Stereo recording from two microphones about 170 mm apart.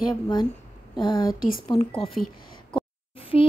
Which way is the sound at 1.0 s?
25° left (ahead or behind).